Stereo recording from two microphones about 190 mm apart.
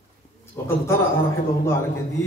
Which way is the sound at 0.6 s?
15° left (ahead or behind).